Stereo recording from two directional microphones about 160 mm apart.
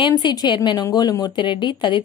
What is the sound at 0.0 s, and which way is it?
A woman's voice, 25° left (ahead or behind).